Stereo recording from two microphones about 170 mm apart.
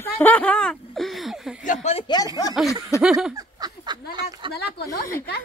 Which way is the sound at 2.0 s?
25° left (ahead or behind).